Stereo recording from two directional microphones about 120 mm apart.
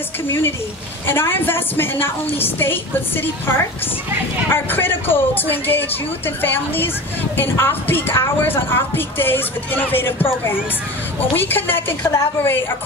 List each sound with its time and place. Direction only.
1.0 s speech: 20° left (ahead or behind)